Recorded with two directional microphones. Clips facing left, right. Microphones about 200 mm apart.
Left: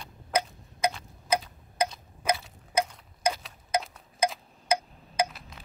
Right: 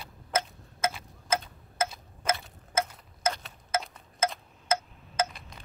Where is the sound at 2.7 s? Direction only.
15° left (ahead or behind).